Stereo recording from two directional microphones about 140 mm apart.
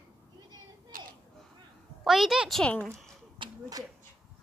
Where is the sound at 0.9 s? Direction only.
80° right.